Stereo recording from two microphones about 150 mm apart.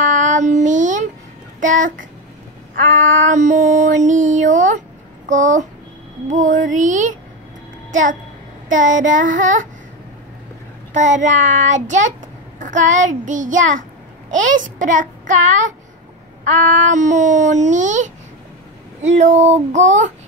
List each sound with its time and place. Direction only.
0.0 s child singing: 55° right (ahead or behind)
1.6 s a child's voice: 60° right (ahead or behind)
3.3 s a child's voice: 55° right (ahead or behind)
8.6 s a child's voice: 60° right (ahead or behind)
10.9 s a child's voice: 55° right (ahead or behind)
19.0 s child singing: 50° right (ahead or behind)